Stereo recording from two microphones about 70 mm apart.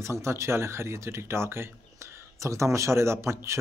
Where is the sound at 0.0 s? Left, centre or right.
Right.